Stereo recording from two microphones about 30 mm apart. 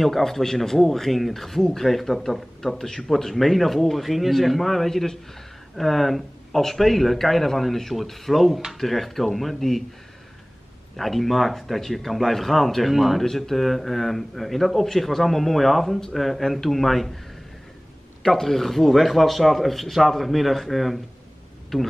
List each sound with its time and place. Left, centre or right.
0.0 s speech: centre
2.8 s a man's voice: centre
5.8 s a man's voice: centre
11.0 s a man's voice: centre
13.2 s a man's voice: centre
18.2 s a man's voice: centre